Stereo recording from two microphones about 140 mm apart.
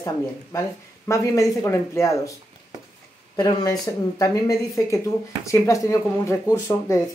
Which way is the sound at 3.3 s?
25° left (ahead or behind).